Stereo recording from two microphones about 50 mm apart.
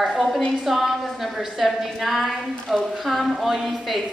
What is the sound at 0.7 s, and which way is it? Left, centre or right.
A woman's voice, centre.